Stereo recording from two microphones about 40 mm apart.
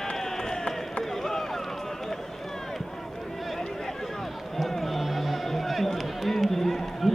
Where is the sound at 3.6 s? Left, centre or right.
Centre.